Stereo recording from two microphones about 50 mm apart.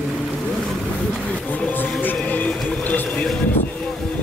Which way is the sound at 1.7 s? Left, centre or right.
Left.